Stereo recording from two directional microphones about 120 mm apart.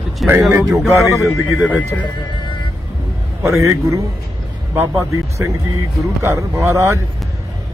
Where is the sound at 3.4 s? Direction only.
25° right (ahead or behind).